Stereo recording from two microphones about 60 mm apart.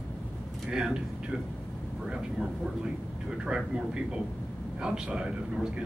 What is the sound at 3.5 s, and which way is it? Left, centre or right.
Speech, centre.